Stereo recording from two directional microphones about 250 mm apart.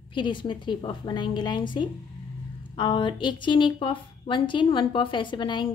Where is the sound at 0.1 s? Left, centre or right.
Centre.